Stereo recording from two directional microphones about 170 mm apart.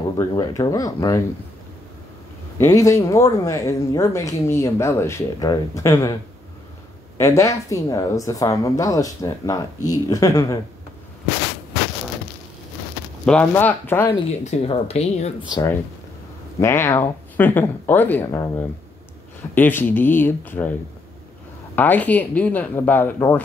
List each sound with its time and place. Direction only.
0.2 s speech: 20° left (ahead or behind)
2.6 s speech: 15° left (ahead or behind)
7.2 s speech: 15° left (ahead or behind)
13.2 s speech: 10° left (ahead or behind)
14.4 s speech: 40° left (ahead or behind)
16.5 s speech: 15° left (ahead or behind)
21.7 s speech: 10° left (ahead or behind)